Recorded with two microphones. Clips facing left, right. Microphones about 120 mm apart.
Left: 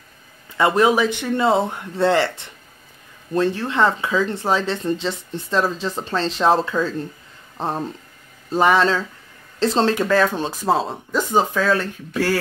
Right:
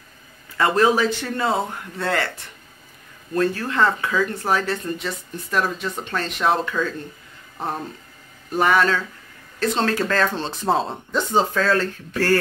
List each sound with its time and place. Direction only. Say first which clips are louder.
0.6 s speech: left 2 dB; 20° left (ahead or behind)
9.9 s speech: left 3 dB; 10° left (ahead or behind)